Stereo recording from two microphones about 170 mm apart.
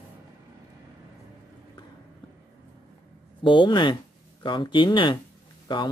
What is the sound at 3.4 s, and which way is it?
Speech, 25° left (ahead or behind).